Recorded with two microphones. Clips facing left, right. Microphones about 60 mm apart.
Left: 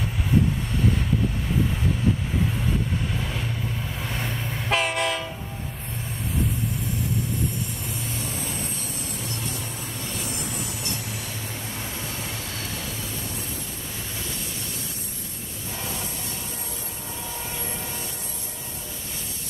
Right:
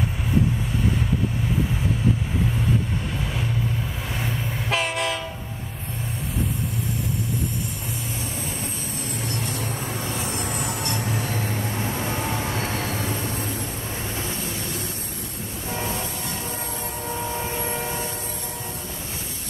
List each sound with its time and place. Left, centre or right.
3.1 s vehicle: centre
4.1 s train: centre
10.4 s vehicle: right
12.4 s train: right
17.4 s train: right